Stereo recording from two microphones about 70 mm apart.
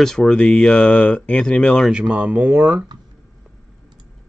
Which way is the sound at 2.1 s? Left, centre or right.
Centre.